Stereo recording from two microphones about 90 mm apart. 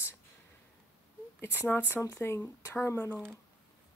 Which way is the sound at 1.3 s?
25° left (ahead or behind).